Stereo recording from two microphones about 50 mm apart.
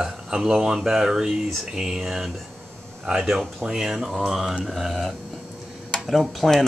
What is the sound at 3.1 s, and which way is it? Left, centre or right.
Speech, centre.